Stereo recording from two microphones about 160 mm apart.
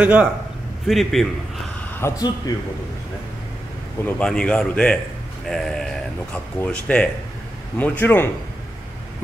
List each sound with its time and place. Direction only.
0.0 s a man's voice: 10° right (ahead or behind)
2.0 s speech: 20° left (ahead or behind)
4.0 s speech: 5° left (ahead or behind)